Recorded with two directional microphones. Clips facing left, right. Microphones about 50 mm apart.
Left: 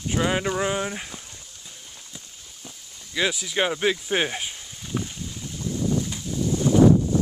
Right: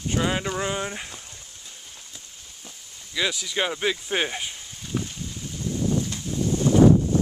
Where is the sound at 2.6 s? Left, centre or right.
Centre.